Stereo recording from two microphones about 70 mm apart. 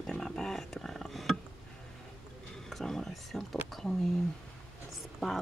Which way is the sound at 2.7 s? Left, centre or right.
Centre.